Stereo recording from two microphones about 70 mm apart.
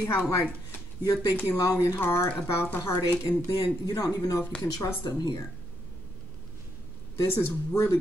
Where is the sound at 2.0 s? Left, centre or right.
Left.